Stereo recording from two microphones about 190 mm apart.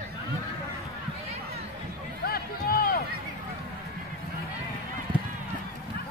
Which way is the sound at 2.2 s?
50° left (ahead or behind).